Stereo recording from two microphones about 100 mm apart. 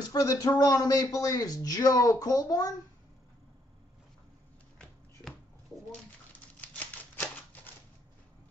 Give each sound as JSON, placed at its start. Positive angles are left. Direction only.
{"t": 0.0, "sound": "speech", "side_deg": 40}
{"t": 5.2, "sound": "a sound", "side_deg": 0}
{"t": 6.3, "sound": "typewriter", "side_deg": 15}